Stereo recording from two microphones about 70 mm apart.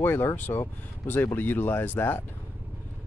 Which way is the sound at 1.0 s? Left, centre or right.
Left.